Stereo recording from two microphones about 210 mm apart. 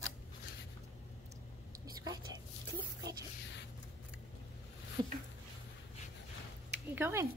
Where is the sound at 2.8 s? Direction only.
20° right (ahead or behind).